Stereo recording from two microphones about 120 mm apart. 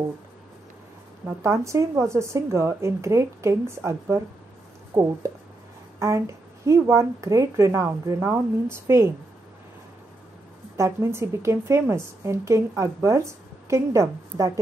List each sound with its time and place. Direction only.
1.2 s a woman's voice: 25° right (ahead or behind)
10.8 s a woman's voice: 20° right (ahead or behind)